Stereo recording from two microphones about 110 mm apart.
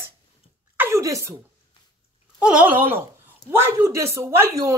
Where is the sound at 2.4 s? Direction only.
10° right (ahead or behind).